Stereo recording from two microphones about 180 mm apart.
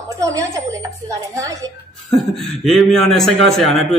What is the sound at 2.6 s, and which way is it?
A man's voice, centre (ahead or behind).